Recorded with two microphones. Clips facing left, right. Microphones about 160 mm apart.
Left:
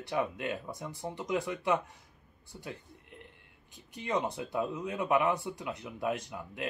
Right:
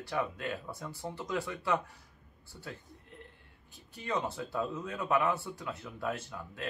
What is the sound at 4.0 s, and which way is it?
Speech, 20° left (ahead or behind).